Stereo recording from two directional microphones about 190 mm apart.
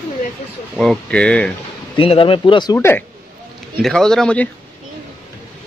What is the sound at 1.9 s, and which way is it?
Speech, 30° left (ahead or behind).